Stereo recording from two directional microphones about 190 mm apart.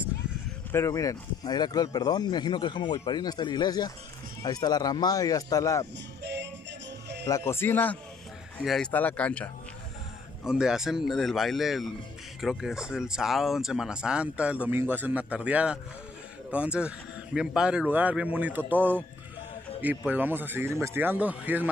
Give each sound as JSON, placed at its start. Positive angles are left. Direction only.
{"t": 0.7, "sound": "speech", "side_deg": 15}
{"t": 6.2, "sound": "music", "side_deg": -65}
{"t": 7.2, "sound": "speech", "side_deg": 15}
{"t": 20.1, "sound": "speech", "side_deg": -10}